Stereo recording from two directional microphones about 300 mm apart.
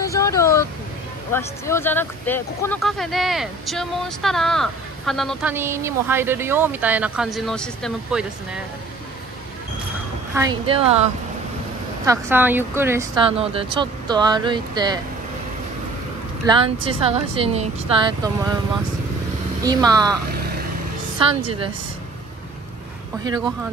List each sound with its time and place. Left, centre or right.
0.0 s a sound: centre
1.3 s speech: centre
10.3 s speech: centre
12.1 s speech: centre
16.4 s speech: centre
19.6 s speech: centre
23.2 s speech: centre